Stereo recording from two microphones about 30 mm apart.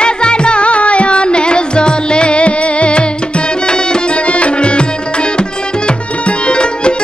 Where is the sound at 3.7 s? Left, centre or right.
Left.